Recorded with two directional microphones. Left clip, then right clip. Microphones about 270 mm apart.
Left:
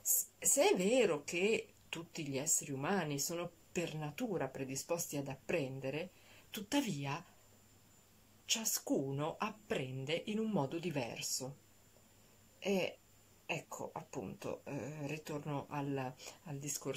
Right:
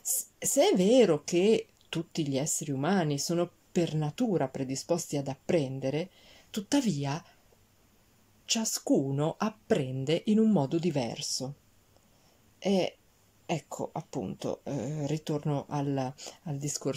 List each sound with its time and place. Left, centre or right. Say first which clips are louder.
0.0 s speech: right 3 dB; right
8.5 s speech: right 8 dB; centre
12.5 s speech: right 8 dB; right